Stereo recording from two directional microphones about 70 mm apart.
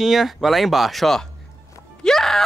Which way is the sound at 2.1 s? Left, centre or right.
Centre.